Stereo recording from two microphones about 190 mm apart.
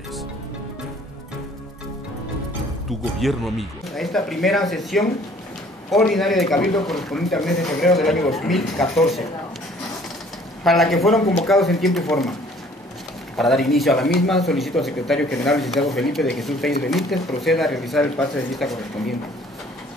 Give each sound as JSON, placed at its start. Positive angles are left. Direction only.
{"t": 3.2, "sound": "speech", "side_deg": 0}
{"t": 10.6, "sound": "speech", "side_deg": 0}
{"t": 13.4, "sound": "speech", "side_deg": 0}